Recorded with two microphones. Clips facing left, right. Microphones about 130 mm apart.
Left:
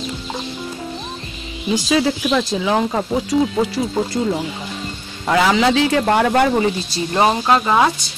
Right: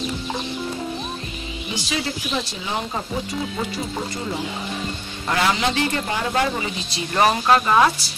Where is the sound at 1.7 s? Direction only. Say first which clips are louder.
Left 11 dB; 90° left.